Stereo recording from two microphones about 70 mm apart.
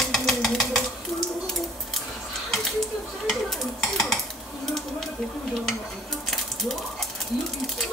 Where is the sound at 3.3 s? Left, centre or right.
Centre.